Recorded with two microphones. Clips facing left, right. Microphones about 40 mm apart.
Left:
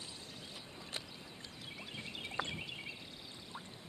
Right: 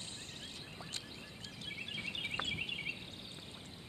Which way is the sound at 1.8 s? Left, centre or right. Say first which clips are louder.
Right 5 dB; right.